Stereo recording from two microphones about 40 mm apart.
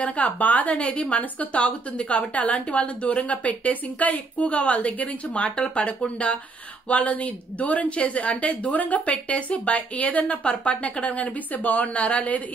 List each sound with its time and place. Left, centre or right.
0.0 s a woman's voice: left